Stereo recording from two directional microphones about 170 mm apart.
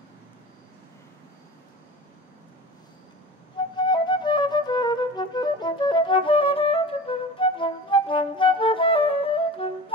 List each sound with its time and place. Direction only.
3.7 s flute: 25° left (ahead or behind)